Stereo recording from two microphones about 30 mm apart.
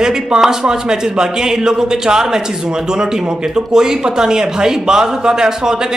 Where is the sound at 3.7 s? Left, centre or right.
Right.